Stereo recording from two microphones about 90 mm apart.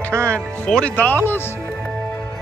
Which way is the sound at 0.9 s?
20° left (ahead or behind).